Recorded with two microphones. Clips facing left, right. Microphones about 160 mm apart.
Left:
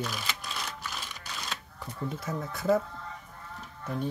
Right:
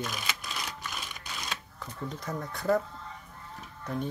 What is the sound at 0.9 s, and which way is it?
Typewriter, centre (ahead or behind).